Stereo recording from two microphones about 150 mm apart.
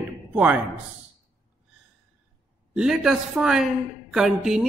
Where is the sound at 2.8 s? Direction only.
5° right (ahead or behind).